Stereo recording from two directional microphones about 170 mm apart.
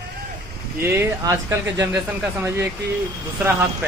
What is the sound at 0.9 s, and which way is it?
Speech, 15° right (ahead or behind).